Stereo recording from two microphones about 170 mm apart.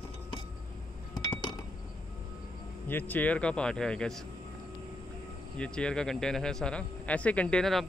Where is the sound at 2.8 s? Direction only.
10° left (ahead or behind).